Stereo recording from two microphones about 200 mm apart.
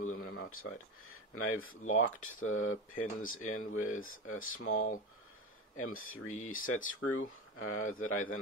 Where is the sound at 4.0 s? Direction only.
90° left.